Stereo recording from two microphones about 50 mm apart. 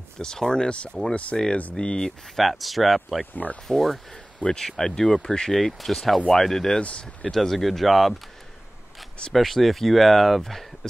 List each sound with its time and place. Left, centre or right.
0.2 s speech: centre
1.8 s speech: centre
2.3 s speech: centre
5.6 s speech: centre
6.8 s speech: left
7.2 s speech: centre
9.3 s speech: centre